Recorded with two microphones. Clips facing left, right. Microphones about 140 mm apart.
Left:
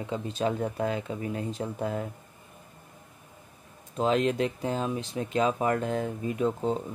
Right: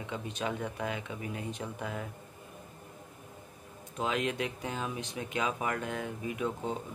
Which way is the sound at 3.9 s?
35° left (ahead or behind).